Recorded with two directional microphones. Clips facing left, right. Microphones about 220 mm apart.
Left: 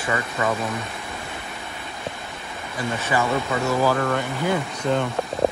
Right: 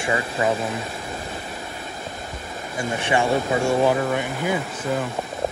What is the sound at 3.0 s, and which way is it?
Speech, 30° right (ahead or behind).